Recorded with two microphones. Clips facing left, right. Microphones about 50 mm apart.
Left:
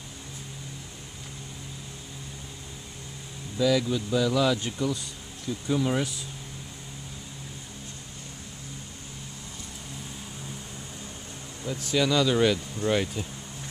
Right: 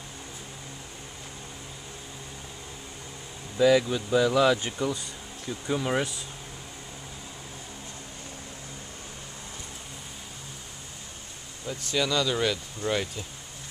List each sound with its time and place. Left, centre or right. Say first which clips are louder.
3.5 s speech: right 3 dB; right
11.6 s speech: left 3 dB; centre